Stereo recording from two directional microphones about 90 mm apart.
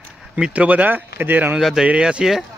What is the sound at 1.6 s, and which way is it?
Speech, 5° right (ahead or behind).